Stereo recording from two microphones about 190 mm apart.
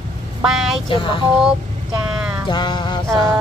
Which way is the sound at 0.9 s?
25° left (ahead or behind).